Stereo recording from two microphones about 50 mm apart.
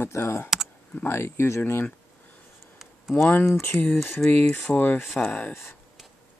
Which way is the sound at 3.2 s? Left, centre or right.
Left.